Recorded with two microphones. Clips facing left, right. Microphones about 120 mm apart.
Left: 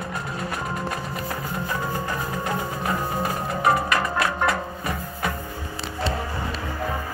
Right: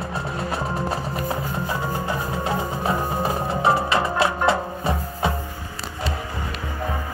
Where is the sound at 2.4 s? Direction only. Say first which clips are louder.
Right 3 dB; 25° right (ahead or behind).